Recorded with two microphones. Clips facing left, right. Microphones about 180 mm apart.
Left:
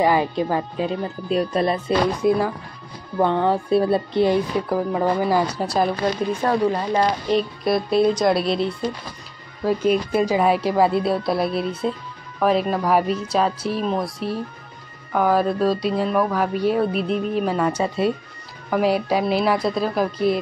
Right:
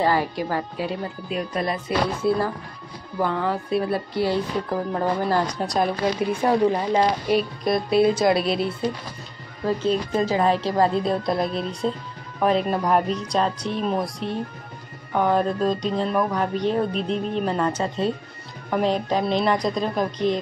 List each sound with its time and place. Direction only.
0.0 s speech: 15° left (ahead or behind)
1.3 s speech: 30° left (ahead or behind)
2.2 s speech: 15° left (ahead or behind)
3.2 s speech: 25° left (ahead or behind); by 5.9 s 5° left (ahead or behind)
6.4 s speech: 15° right (ahead or behind)
7.2 s speech: centre (ahead or behind)
9.7 s speech: 10° left (ahead or behind)